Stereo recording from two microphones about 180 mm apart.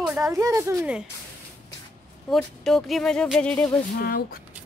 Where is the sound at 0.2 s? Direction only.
20° right (ahead or behind).